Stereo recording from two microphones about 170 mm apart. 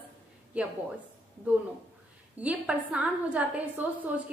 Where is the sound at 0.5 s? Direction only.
10° right (ahead or behind).